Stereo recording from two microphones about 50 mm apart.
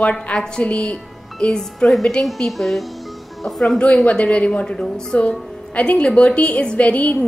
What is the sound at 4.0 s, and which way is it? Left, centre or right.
A woman's voice, left.